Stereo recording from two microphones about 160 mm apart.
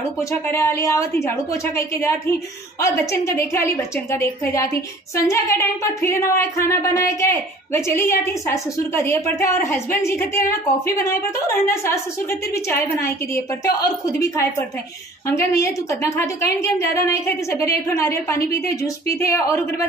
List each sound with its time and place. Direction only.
0.3 s a woman's voice: 20° left (ahead or behind)